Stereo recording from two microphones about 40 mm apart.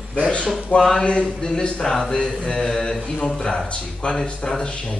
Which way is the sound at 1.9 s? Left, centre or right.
Centre.